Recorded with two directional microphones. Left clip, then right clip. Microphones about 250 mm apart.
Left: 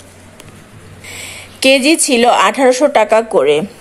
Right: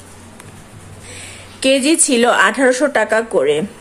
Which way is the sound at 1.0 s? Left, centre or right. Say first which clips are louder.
Left 6 dB; centre.